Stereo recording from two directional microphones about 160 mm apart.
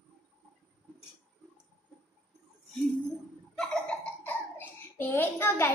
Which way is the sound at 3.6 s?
10° left (ahead or behind).